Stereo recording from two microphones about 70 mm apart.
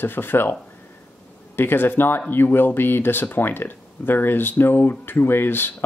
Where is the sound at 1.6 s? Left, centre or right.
Left.